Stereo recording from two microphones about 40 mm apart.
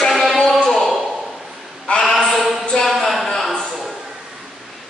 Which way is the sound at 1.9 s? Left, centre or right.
Left.